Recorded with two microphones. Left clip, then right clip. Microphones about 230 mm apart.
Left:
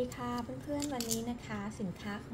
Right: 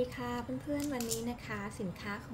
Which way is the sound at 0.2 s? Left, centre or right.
Right.